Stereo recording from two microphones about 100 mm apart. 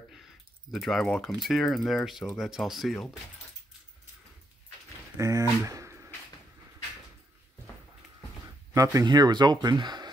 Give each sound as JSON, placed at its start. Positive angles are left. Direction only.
{"t": 0.1, "sound": "speech", "side_deg": 0}
{"t": 5.1, "sound": "a sound", "side_deg": -30}
{"t": 8.7, "sound": "speech", "side_deg": -35}
{"t": 9.0, "sound": "speech", "side_deg": -45}